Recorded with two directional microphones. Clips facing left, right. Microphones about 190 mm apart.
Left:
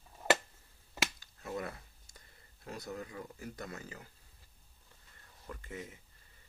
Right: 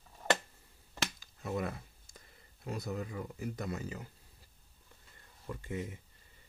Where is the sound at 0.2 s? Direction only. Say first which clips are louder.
Left 2 dB; 5° left (ahead or behind).